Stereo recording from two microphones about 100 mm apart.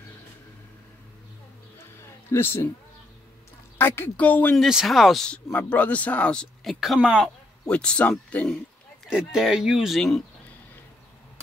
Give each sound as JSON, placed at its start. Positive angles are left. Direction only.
{"t": 2.0, "sound": "a sound", "side_deg": 25}
{"t": 3.7, "sound": "speech", "side_deg": 20}
{"t": 4.6, "sound": "speech", "side_deg": -5}
{"t": 5.5, "sound": "speech", "side_deg": 15}
{"t": 7.6, "sound": "speech", "side_deg": 10}
{"t": 9.0, "sound": "speech", "side_deg": -5}